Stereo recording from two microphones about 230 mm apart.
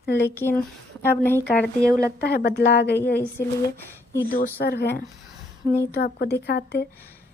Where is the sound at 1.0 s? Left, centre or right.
Centre.